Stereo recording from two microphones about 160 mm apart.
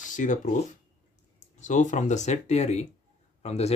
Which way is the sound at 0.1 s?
50° left (ahead or behind).